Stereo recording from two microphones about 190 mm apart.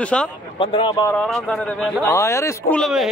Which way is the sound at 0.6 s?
25° left (ahead or behind).